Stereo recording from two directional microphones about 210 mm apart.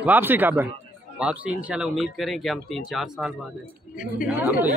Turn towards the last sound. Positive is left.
turn(degrees=-10)  # may be behind; listen again after turning